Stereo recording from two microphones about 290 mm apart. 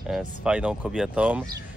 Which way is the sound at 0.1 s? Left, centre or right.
Centre.